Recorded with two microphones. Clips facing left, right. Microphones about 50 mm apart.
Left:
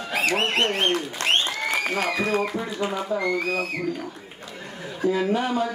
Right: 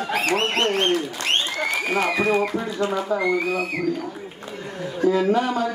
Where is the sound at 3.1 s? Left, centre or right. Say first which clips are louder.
Right 1 dB; centre.